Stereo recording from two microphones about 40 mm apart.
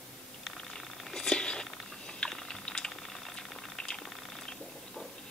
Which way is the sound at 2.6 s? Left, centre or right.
Left.